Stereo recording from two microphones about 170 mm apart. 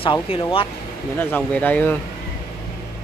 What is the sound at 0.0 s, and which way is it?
Speech, 30° left (ahead or behind).